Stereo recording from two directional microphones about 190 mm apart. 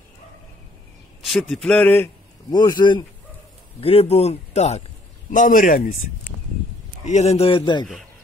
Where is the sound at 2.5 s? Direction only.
20° left (ahead or behind); by 5.9 s 45° left (ahead or behind).